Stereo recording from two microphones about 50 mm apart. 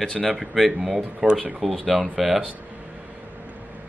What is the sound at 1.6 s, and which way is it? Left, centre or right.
Speech, centre.